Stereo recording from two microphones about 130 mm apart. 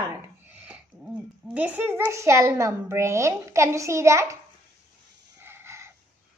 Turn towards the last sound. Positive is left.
turn(degrees=-20)  # may be behind; listen again after turning